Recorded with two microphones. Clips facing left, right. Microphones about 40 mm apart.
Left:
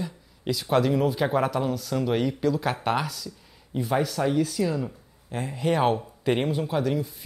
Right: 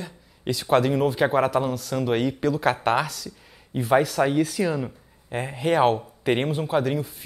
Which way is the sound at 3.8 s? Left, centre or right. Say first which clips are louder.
Right 5 dB; right.